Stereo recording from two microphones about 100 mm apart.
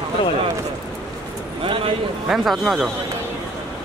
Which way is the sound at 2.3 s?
Centre (ahead or behind).